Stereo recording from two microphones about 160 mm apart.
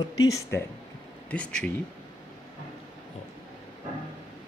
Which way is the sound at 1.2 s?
5° left (ahead or behind).